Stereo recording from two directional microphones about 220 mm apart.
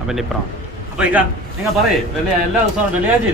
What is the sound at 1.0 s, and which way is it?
Speech, 5° right (ahead or behind).